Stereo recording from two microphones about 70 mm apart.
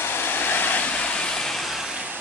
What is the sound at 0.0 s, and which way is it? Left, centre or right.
Vehicle, left.